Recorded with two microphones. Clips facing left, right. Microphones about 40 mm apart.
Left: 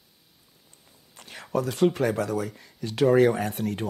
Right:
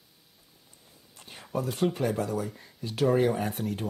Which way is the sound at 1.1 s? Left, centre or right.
Left.